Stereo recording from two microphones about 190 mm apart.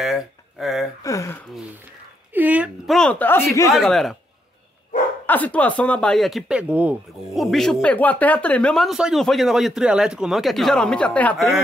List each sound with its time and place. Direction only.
0.0 s a sound: centre (ahead or behind)
1.0 s speech: 15° left (ahead or behind)
2.3 s speech: 10° right (ahead or behind); by 3.7 s 15° left (ahead or behind)
3.7 s speech: centre (ahead or behind)
5.2 s speech: 10° left (ahead or behind)